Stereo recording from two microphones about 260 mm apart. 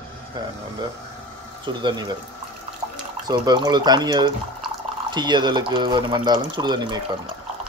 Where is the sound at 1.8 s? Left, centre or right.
Centre.